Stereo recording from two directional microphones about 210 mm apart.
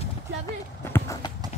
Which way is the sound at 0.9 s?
15° left (ahead or behind).